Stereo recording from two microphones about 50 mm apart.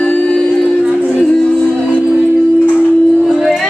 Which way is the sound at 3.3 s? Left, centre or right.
Centre.